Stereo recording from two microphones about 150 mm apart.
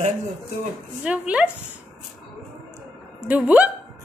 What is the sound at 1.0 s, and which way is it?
Speech, 10° right (ahead or behind).